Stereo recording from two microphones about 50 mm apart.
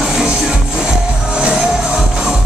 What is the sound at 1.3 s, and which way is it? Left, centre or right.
Music, right.